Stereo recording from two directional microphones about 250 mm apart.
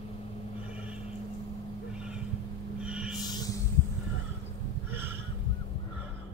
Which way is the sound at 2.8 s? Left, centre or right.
Centre.